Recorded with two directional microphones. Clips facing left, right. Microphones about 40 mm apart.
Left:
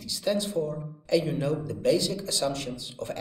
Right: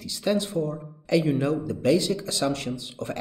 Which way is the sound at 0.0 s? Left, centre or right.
Right.